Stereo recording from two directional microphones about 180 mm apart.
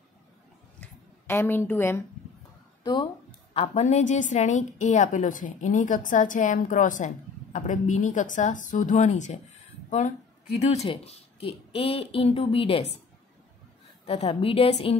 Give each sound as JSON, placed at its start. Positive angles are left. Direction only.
{"t": 0.7, "sound": "a sound", "side_deg": 15}
{"t": 2.8, "sound": "speech", "side_deg": 25}
{"t": 3.5, "sound": "a woman's voice", "side_deg": 35}
{"t": 10.9, "sound": "a woman's voice", "side_deg": 30}
{"t": 14.0, "sound": "a woman's voice", "side_deg": 30}